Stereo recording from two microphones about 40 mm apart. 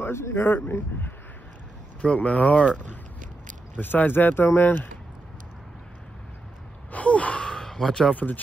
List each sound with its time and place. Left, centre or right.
0.0 s speech: left
2.2 s speech: left
3.7 s speech: left
6.9 s gasp: left
7.4 s a sound: centre
8.1 s speech: left